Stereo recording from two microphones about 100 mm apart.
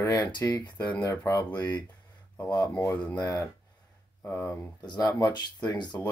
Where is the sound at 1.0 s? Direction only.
35° left (ahead or behind).